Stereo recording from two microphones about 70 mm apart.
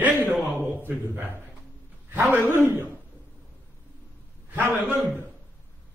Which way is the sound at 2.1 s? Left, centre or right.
Right.